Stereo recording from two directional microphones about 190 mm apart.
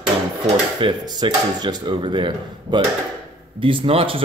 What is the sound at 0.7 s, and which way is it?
Speech, 25° right (ahead or behind).